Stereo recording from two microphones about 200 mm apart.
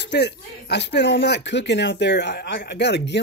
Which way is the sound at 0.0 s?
55° left (ahead or behind).